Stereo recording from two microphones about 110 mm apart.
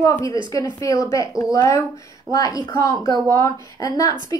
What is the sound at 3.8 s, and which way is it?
Speech, 35° left (ahead or behind).